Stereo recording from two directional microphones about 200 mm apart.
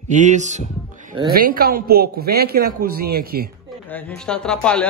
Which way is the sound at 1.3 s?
45° right (ahead or behind).